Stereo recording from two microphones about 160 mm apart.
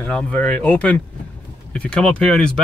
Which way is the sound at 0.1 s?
5° left (ahead or behind).